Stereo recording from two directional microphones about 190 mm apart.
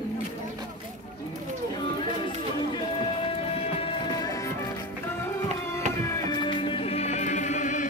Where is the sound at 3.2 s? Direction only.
30° left (ahead or behind).